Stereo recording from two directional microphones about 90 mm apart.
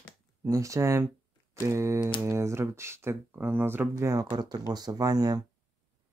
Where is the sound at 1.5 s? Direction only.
30° right (ahead or behind).